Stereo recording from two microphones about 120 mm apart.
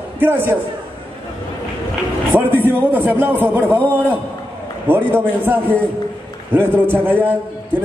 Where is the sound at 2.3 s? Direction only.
15° right (ahead or behind).